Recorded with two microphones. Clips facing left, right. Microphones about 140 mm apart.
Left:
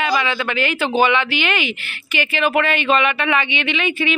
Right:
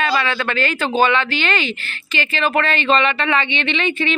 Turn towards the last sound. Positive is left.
turn(degrees=10)  # may be behind; listen again after turning